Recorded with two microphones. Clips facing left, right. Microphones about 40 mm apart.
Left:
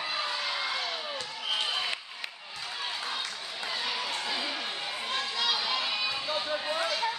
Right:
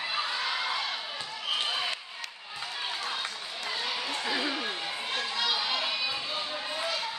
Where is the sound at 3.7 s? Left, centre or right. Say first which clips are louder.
Even; centre.